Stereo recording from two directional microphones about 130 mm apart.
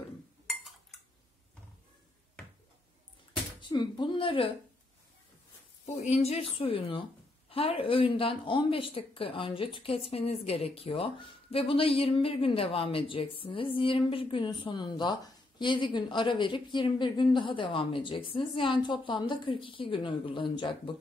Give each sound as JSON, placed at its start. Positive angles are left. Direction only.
{"t": 0.5, "sound": "dishes", "side_deg": 0}
{"t": 3.6, "sound": "a woman's voice", "side_deg": 35}
{"t": 5.9, "sound": "a woman's voice", "side_deg": 60}